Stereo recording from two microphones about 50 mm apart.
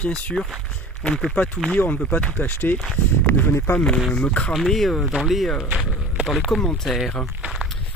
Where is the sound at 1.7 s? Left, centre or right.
Left.